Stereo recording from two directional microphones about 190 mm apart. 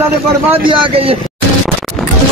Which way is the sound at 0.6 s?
30° right (ahead or behind).